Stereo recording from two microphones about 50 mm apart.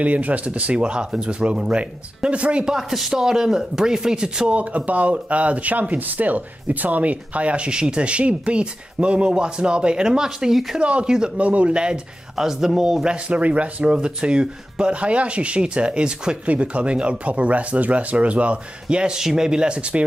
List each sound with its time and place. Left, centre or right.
0.0 s speech: right
2.7 s speech: centre
4.5 s speech: right; by 10.8 s centre
10.8 s speech: right
13.3 s speech: right